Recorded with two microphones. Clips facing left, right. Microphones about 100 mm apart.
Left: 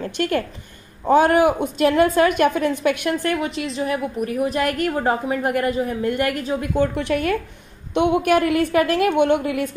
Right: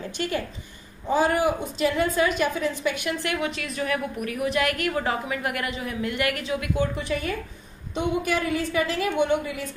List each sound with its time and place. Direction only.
0.0 s a woman's voice: 55° left (ahead or behind)
3.3 s a woman's voice: 35° left (ahead or behind)
7.0 s a woman's voice: 60° left (ahead or behind)